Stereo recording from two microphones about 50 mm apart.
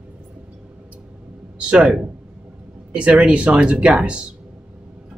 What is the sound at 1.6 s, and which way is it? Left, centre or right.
Speech, centre.